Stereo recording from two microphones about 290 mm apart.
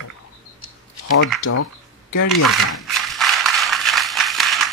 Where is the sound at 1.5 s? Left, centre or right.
Left.